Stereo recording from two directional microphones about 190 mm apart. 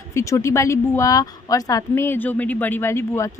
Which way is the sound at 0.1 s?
15° left (ahead or behind).